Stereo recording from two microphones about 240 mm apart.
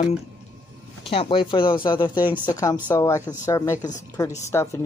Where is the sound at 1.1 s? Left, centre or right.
Left.